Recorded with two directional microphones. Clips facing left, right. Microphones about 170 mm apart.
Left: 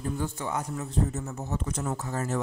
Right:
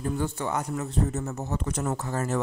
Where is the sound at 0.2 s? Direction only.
70° right (ahead or behind).